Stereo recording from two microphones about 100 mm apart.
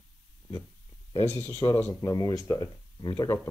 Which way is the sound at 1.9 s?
35° left (ahead or behind).